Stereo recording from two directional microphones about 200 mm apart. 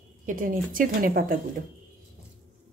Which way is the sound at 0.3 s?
45° right (ahead or behind).